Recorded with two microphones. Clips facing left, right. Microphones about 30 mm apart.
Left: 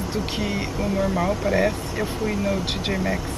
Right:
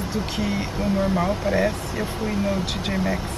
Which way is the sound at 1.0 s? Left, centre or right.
Centre.